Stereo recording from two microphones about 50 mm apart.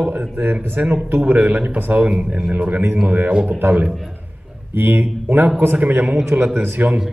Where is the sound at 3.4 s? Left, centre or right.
Right.